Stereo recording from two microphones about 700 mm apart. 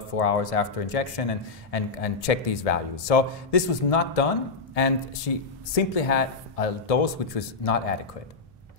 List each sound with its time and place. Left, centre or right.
0.1 s a man's voice: left